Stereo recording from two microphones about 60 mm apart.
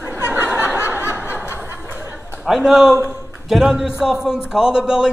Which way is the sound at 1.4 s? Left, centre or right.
Right.